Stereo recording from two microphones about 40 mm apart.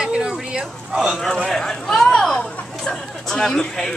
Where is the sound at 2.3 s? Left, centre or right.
Left.